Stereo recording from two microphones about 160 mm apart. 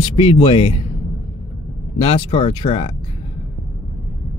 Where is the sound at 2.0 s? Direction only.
35° left (ahead or behind).